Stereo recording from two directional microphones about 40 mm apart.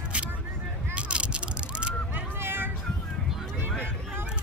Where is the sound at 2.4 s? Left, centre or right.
Right.